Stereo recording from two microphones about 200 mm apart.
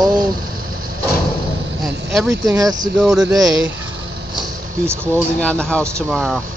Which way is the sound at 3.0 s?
Centre (ahead or behind).